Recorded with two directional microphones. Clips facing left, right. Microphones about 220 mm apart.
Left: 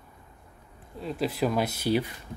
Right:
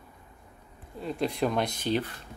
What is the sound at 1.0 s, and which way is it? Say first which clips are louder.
Speech: left 1 dB; 5° left (ahead or behind).